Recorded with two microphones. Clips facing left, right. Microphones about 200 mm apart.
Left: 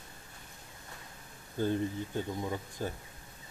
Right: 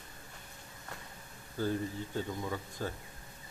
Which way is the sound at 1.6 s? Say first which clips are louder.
Left 3 dB; 20° left (ahead or behind).